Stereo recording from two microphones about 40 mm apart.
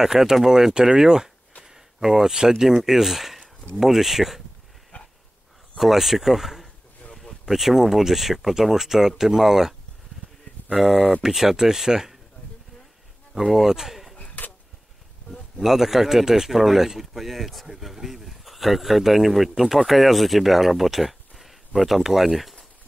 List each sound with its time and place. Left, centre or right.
0.0 s speech: centre
1.6 s a sound: centre
2.8 s speech: centre
4.9 s dog: left
5.8 s speech: centre
10.8 s speech: centre
13.3 s speech: centre
14.1 s a sound: left
15.6 s speech: centre